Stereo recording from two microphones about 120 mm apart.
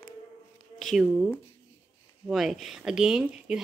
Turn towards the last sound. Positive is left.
turn(degrees=-5)  # may be behind; listen again after turning